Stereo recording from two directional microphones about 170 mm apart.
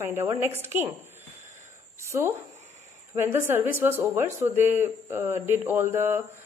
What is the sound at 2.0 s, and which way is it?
A woman's voice, 15° right (ahead or behind).